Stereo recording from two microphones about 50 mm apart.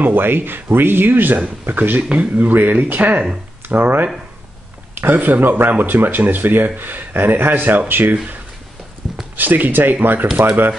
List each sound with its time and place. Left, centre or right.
0.0 s speech: right
2.1 s speech: right
9.4 s speech: right